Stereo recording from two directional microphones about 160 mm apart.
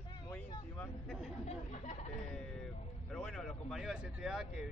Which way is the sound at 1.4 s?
45° left (ahead or behind).